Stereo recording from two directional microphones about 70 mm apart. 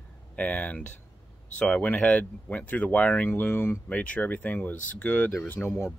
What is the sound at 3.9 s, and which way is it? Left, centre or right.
Speech, left.